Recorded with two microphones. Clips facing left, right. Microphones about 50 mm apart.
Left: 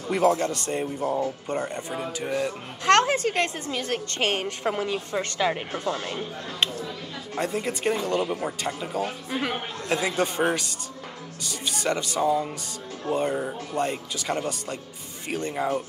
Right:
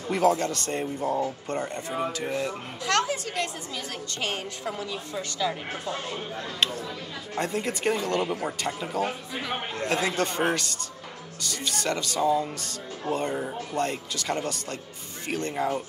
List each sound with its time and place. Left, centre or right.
0.3 s speech: centre
2.2 s speech: centre
2.8 s a woman's voice: left
7.3 s speech: centre
8.2 s speech: centre
9.0 s speech: centre
9.3 s a woman's voice: left
10.0 s speech: centre